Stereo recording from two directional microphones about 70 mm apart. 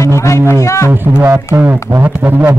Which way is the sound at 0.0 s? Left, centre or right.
Left.